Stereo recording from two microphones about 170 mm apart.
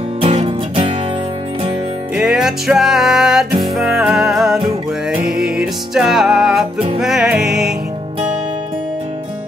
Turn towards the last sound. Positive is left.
turn(degrees=-5)  # may be behind; listen again after turning